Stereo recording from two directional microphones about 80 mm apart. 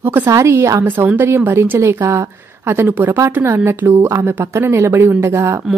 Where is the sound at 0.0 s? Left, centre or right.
Right.